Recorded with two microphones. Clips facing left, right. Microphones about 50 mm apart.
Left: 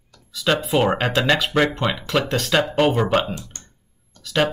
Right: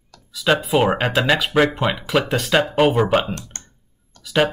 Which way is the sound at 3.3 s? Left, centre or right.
Right.